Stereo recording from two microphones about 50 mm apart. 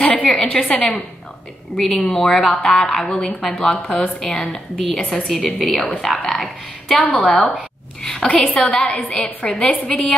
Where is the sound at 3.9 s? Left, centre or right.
Left.